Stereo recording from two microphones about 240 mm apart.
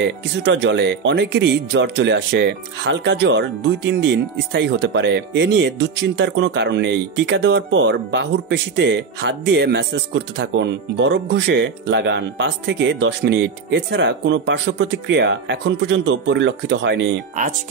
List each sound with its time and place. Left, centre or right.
0.0 s speech: right